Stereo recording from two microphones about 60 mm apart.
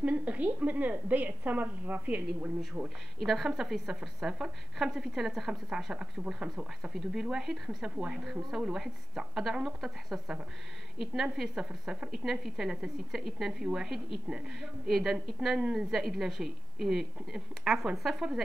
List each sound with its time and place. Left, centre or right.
0.0 s a woman's voice: right
3.2 s a woman's voice: centre
11.3 s a woman's voice: centre